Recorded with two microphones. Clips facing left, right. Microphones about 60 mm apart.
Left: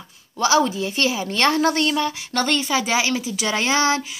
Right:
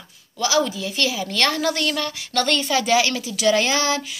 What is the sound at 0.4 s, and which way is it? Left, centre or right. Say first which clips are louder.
A woman's voice: left 3 dB; left.